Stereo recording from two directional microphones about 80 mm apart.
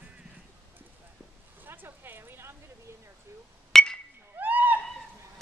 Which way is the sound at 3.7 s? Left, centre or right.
Centre.